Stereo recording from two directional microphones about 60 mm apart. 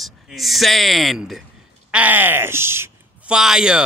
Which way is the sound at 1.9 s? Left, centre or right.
Right.